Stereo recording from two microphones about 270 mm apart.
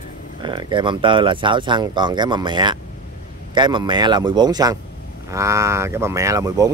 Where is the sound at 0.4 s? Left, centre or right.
Centre.